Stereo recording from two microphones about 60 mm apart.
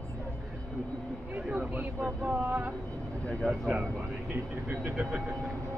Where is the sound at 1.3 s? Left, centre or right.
Right.